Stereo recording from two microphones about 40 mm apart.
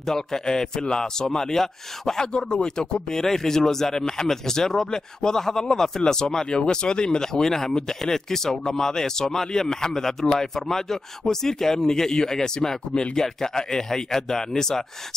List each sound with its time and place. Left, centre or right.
0.0 s a man's voice: centre